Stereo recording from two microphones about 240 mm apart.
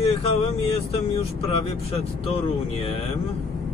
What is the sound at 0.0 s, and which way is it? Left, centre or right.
Speech, left.